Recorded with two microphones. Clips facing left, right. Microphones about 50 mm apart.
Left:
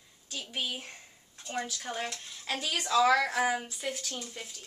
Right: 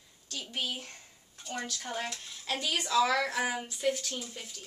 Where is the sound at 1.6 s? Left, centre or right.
Centre.